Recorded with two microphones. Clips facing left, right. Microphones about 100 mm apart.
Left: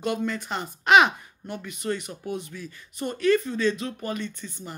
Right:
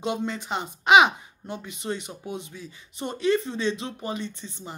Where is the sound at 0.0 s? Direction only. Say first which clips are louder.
Left 1 dB; 20° right (ahead or behind).